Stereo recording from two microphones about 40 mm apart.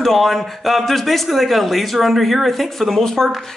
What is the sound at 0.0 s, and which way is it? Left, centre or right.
Speech, centre.